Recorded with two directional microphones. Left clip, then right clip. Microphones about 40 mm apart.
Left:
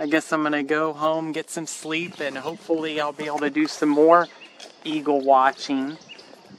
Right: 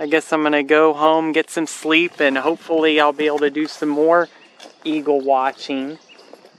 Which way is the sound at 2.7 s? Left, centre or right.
Right.